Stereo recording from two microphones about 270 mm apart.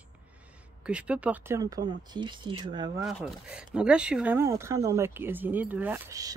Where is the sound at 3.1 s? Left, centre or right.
Centre.